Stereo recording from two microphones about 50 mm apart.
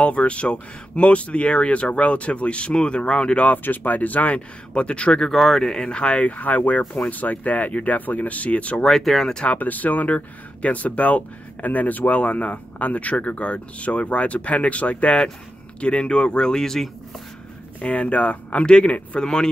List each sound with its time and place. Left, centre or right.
0.0 s speech: left
3.4 s speech: left; by 5.3 s centre
5.3 s speech: centre; by 8.8 s left
8.8 s speech: centre
9.4 s speech: left; by 16.9 s centre
17.7 s speech: left
19.1 s speech: centre